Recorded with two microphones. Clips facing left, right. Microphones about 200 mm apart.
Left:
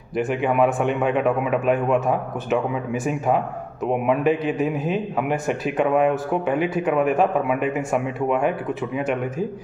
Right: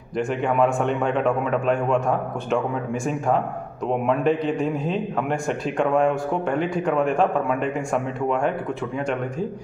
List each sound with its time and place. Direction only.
0.2 s a man's voice: 5° left (ahead or behind)